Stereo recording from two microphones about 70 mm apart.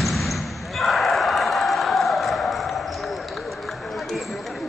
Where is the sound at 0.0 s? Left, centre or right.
Centre.